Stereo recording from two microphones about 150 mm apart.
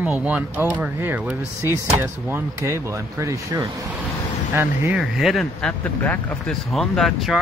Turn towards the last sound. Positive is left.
turn(degrees=0)  # may be behind; listen again after turning